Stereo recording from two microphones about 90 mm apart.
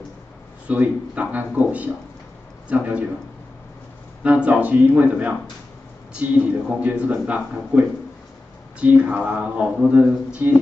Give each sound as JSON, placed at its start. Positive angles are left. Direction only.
{"t": 0.7, "sound": "a man's voice", "side_deg": -15}
{"t": 4.2, "sound": "a man's voice", "side_deg": -15}